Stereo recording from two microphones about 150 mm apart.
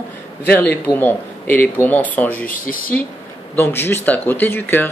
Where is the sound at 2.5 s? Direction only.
70° left (ahead or behind).